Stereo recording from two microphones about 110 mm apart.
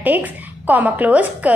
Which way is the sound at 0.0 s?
15° right (ahead or behind).